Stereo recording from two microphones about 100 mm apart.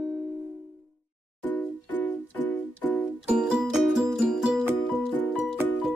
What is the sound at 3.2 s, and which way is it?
Music, 5° right (ahead or behind).